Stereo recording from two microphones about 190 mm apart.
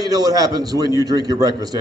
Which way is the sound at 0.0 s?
20° right (ahead or behind).